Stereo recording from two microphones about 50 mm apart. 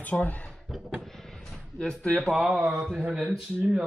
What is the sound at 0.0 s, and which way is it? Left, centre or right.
Speech, left.